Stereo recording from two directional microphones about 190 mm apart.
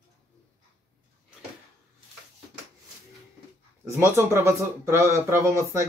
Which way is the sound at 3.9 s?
15° right (ahead or behind).